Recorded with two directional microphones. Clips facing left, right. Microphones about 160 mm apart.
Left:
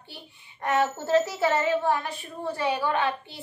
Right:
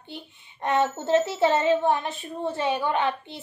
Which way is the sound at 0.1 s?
20° right (ahead or behind).